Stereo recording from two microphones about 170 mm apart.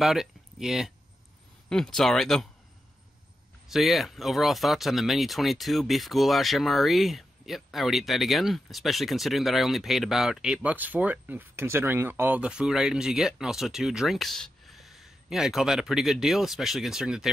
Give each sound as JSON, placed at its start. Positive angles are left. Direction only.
{"t": 0.0, "sound": "speech", "side_deg": 0}
{"t": 3.7, "sound": "speech", "side_deg": 0}